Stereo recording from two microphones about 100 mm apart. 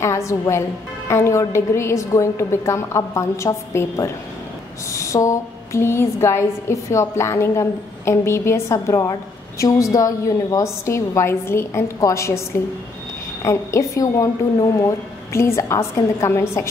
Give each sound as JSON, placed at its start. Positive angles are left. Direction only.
{"t": 0.0, "sound": "a woman's voice", "side_deg": 30}